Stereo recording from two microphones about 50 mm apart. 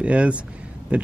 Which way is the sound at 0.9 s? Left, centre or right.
Right.